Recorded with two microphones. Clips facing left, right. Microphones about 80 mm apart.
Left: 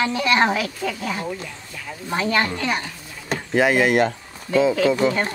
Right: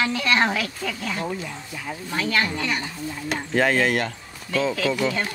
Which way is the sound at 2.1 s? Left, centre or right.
Left.